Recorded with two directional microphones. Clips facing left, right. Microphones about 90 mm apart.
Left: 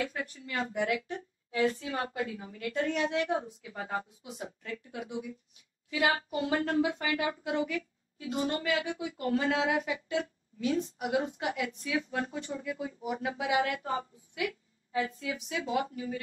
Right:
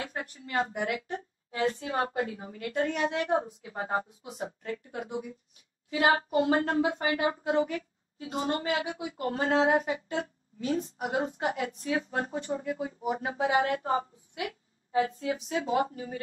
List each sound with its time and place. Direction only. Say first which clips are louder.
0.0 s speech: left 2 dB; 40° right (ahead or behind)